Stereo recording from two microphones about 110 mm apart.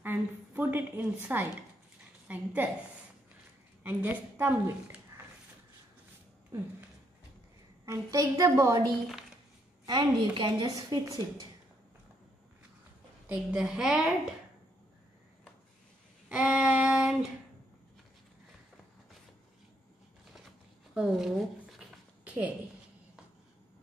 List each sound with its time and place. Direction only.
0.0 s a sound: 20° right (ahead or behind)
2.2 s a woman's voice: 15° right (ahead or behind)
3.8 s a woman's voice: 15° right (ahead or behind)
7.8 s a woman's voice: 30° right (ahead or behind)
9.8 s a woman's voice: 45° right (ahead or behind)
13.3 s a woman's voice: 10° right (ahead or behind)
16.3 s female singing: 10° right (ahead or behind)
20.9 s speech: 5° right (ahead or behind)
22.2 s a sound: 10° right (ahead or behind)